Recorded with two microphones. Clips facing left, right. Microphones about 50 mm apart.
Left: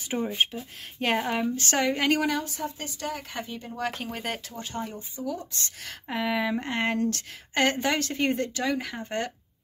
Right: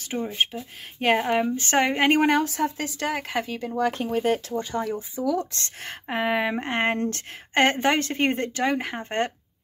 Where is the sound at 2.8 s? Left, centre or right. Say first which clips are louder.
Right 6 dB; right.